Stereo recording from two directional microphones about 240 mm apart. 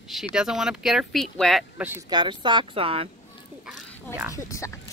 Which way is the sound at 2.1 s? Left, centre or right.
Centre.